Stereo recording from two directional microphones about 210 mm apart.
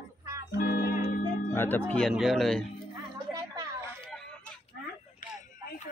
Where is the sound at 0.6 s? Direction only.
45° left (ahead or behind).